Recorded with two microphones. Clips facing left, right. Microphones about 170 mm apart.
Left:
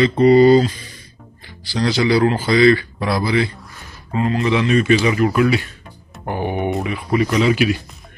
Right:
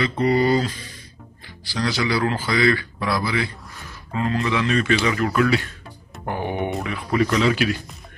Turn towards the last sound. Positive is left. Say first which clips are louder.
# left 4 dB
turn(degrees=10)  # may be behind; listen again after turning